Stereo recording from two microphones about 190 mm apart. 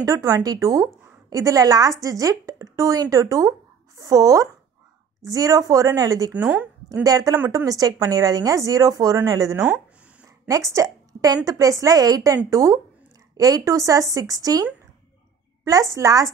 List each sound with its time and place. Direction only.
0.0 s a woman's voice: 15° right (ahead or behind)
7.0 s a woman's voice: 20° right (ahead or behind)